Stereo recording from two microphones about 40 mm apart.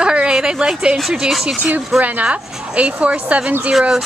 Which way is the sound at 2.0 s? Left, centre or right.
Right.